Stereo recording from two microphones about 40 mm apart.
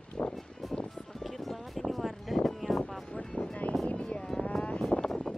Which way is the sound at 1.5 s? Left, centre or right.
Centre.